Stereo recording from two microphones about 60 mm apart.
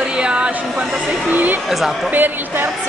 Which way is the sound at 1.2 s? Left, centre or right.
Right.